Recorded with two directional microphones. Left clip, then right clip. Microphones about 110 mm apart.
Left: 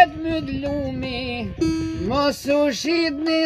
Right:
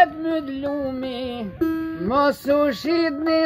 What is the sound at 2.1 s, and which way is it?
Speech, 5° left (ahead or behind).